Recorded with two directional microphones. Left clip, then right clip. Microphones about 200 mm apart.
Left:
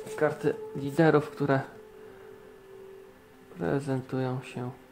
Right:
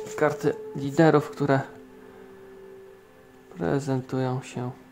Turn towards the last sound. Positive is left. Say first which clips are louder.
# right 4 dB
turn(degrees=-15)  # may be behind; listen again after turning